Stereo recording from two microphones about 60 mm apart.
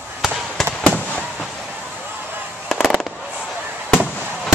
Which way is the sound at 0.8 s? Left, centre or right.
Left.